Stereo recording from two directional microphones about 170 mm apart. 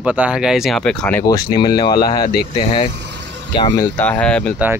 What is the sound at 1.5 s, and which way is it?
Speech, 25° left (ahead or behind).